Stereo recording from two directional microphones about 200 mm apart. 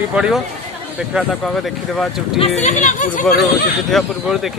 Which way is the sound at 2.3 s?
30° left (ahead or behind).